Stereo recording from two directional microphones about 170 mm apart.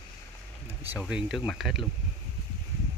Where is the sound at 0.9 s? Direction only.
5° right (ahead or behind).